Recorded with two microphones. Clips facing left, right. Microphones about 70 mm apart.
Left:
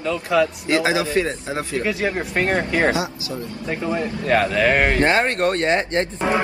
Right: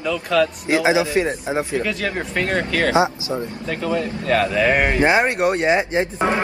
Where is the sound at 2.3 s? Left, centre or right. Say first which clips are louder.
Even; centre.